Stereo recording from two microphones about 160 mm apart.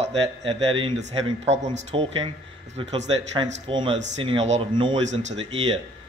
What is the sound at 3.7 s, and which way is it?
A man's voice, 30° right (ahead or behind).